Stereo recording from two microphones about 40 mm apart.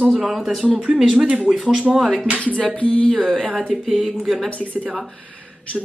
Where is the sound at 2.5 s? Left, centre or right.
Left.